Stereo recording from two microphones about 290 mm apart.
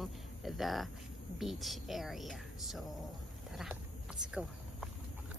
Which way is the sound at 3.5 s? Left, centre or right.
Centre.